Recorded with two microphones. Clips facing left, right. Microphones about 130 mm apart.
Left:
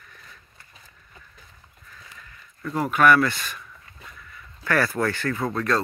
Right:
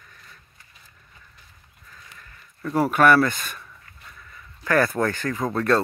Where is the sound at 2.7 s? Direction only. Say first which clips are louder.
Right 2 dB; 40° right (ahead or behind).